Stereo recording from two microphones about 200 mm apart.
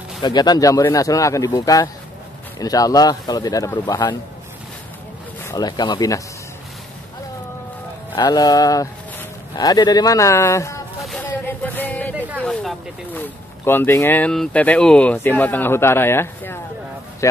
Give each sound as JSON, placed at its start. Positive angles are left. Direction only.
{"t": 0.2, "sound": "speech", "side_deg": 20}
{"t": 5.4, "sound": "speech", "side_deg": 15}
{"t": 8.2, "sound": "speech", "side_deg": 20}
{"t": 11.1, "sound": "a sound", "side_deg": 10}
{"t": 12.2, "sound": "a man's voice", "side_deg": -10}